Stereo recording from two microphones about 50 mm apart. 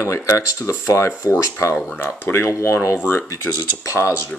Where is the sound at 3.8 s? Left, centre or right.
Left.